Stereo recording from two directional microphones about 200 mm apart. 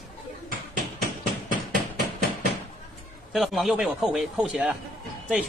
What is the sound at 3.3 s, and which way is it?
A man's voice, centre (ahead or behind).